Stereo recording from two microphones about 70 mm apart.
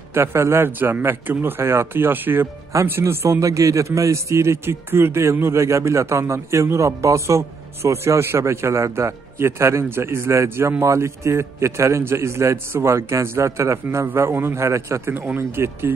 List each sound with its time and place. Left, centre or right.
0.1 s a man's voice: right
0.7 s a man's voice: right
3.3 s a man's voice: right
15.0 s a man's voice: right